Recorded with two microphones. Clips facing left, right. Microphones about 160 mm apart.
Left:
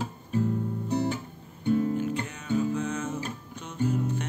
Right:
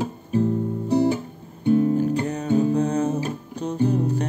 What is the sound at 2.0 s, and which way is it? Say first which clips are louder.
Music: right 8 dB; 35° right (ahead or behind).